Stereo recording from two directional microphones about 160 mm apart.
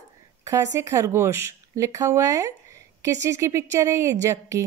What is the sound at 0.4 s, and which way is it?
Speech, 20° right (ahead or behind).